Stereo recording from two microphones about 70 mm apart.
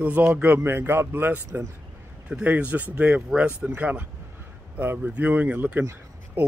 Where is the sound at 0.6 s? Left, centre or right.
Right.